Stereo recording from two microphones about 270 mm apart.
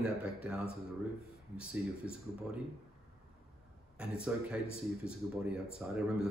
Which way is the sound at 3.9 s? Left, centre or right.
Centre.